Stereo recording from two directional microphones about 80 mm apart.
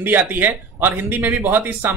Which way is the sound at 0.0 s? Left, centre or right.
Right.